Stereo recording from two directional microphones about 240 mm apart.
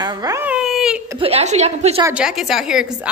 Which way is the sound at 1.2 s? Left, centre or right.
Right.